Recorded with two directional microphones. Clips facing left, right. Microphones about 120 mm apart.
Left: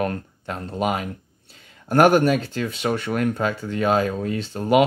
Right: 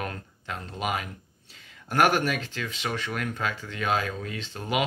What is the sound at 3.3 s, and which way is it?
Speech, 35° left (ahead or behind).